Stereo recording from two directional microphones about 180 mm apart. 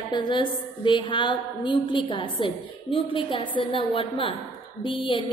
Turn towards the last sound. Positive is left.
turn(degrees=30)  # may be behind; listen again after turning